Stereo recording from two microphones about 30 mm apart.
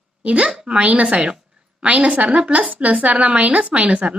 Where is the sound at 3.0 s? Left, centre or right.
Right.